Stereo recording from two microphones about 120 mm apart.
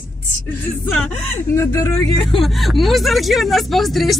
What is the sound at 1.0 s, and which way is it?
Speech, 20° left (ahead or behind).